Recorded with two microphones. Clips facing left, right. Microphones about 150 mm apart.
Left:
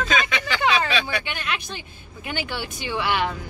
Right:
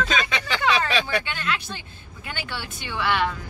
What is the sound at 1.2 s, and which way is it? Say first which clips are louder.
A woman's voice: right 1 dB; 15° left (ahead or behind).